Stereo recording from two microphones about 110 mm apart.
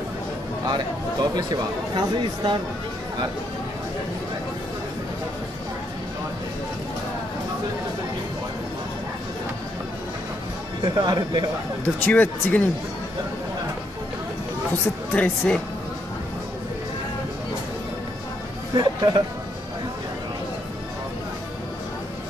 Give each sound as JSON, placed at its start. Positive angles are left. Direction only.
{"t": 0.7, "sound": "speech", "side_deg": -40}
{"t": 11.0, "sound": "speech", "side_deg": -40}
{"t": 11.8, "sound": "speech", "side_deg": 15}
{"t": 14.7, "sound": "speech", "side_deg": 20}
{"t": 18.8, "sound": "speech", "side_deg": -40}